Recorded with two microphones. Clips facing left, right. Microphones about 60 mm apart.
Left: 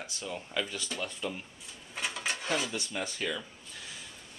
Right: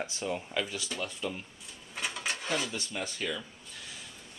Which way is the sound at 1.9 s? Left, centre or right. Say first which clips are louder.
Even; centre.